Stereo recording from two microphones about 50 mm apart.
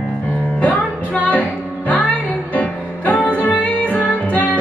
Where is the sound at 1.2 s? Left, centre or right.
Left.